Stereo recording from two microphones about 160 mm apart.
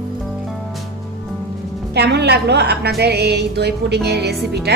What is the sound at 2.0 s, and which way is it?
Speech, 90° right.